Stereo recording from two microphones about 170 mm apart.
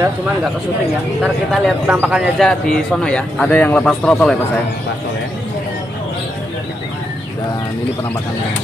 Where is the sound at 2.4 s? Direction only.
5° left (ahead or behind).